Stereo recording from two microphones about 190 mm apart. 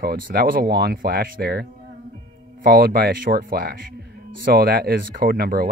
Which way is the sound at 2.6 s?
55° right (ahead or behind).